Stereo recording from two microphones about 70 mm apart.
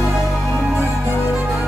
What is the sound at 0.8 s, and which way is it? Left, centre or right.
Music, right.